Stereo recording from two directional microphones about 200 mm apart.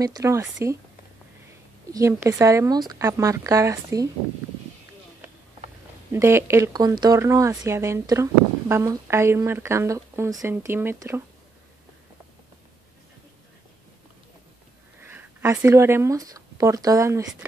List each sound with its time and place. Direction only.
0.0 s speech: 15° right (ahead or behind)
1.9 s speech: 15° right (ahead or behind)
6.1 s speech: 15° right (ahead or behind)
15.0 s speech: 10° right (ahead or behind)